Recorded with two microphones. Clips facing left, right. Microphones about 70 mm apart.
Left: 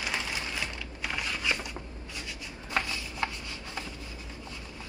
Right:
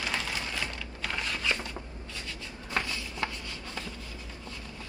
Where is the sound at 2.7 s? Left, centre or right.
Left.